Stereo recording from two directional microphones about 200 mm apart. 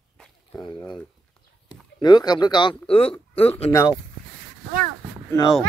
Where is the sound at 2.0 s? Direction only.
20° left (ahead or behind).